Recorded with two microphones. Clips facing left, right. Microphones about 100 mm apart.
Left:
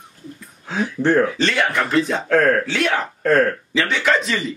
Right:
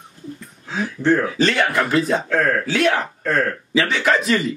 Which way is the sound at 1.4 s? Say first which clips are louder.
Right 1 dB; centre (ahead or behind).